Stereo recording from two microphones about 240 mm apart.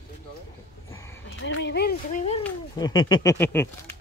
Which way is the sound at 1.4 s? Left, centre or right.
Left.